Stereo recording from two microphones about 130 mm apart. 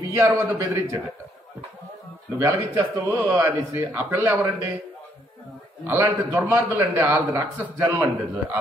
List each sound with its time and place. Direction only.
0.3 s a man's voice: 20° right (ahead or behind)
2.3 s a man's voice: 25° right (ahead or behind)
5.9 s a man's voice: 25° right (ahead or behind)